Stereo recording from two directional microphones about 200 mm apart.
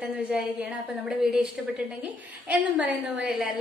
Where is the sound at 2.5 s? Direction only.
5° right (ahead or behind).